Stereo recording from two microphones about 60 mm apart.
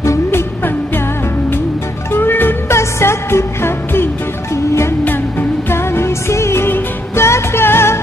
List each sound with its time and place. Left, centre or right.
2.1 s music: left
2.7 s music: left
5.7 s music: left